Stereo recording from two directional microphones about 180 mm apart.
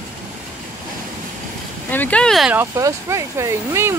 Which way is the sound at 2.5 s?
15° right (ahead or behind).